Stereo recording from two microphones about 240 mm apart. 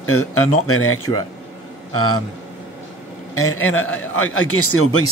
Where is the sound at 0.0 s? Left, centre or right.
Left.